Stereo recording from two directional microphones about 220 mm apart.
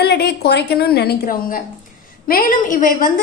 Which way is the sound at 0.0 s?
45° left (ahead or behind).